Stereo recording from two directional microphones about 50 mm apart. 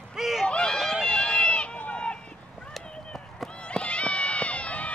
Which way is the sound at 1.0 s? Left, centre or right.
Left.